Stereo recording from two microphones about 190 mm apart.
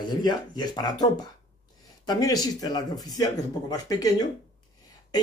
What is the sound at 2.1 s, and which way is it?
Speech, 20° left (ahead or behind).